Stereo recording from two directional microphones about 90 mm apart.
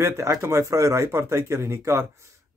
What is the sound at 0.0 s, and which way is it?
Speech, 35° right (ahead or behind).